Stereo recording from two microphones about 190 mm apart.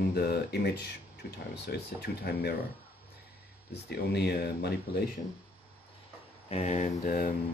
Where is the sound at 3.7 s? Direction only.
60° left (ahead or behind).